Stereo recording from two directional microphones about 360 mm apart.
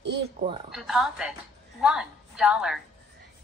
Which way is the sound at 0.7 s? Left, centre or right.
Centre.